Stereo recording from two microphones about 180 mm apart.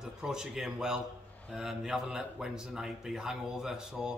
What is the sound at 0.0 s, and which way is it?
A man's voice, 5° right (ahead or behind).